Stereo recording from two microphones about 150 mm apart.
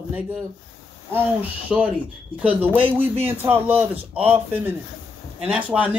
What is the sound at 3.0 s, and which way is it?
Music, 15° right (ahead or behind).